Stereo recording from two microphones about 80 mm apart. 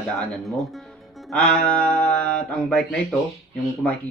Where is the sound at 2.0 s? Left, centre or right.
Centre.